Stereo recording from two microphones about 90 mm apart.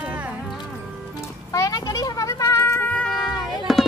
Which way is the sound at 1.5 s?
40° left (ahead or behind).